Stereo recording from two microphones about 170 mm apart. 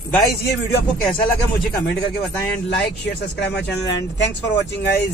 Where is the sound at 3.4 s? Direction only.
85° left.